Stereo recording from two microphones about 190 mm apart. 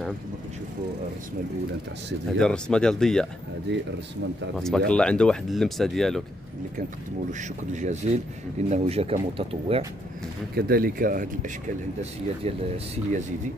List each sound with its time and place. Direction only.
2.3 s speech: 5° left (ahead or behind)
3.7 s speech: 65° right (ahead or behind)
4.6 s speech: centre (ahead or behind)
7.2 s speech: 40° right (ahead or behind)
10.5 s speech: 50° right (ahead or behind)
12.0 s speech: 30° right (ahead or behind)